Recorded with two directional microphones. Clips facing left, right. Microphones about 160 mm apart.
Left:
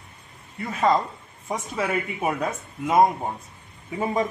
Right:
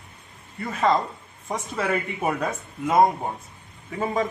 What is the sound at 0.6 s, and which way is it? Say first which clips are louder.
Speech: even; 5° left (ahead or behind).